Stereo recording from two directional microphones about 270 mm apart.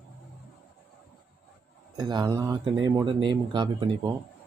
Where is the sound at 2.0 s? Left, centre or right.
Centre.